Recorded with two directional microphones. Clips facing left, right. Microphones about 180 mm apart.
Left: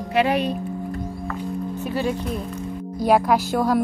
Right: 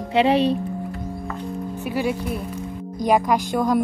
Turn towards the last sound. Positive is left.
turn(degrees=5)  # may be behind; listen again after turning